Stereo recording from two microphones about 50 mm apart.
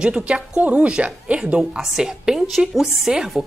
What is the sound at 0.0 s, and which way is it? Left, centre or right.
Speech, right.